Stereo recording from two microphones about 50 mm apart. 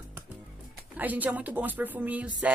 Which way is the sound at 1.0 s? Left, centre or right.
Right.